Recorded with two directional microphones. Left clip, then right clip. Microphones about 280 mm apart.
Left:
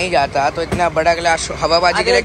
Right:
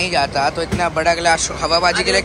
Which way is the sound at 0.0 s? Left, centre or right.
Centre.